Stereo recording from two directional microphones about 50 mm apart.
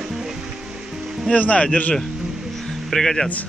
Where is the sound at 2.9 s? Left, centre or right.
Centre.